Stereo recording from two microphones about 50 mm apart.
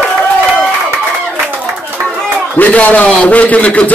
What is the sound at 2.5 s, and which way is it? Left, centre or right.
A man's voice, left.